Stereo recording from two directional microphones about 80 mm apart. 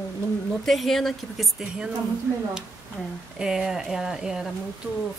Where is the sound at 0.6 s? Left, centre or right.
Centre.